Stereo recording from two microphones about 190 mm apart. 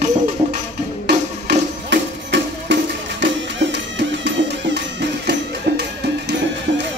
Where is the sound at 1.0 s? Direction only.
65° right (ahead or behind).